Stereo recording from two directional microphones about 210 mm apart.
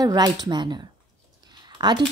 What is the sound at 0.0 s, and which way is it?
Speech, 20° right (ahead or behind).